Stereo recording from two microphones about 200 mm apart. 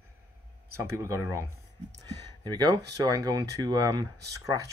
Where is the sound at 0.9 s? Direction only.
15° right (ahead or behind).